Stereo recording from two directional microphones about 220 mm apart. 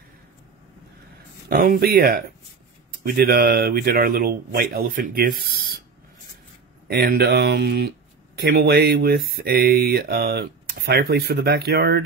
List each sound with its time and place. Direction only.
1.5 s speech: 45° right (ahead or behind)
6.9 s speech: 45° right (ahead or behind)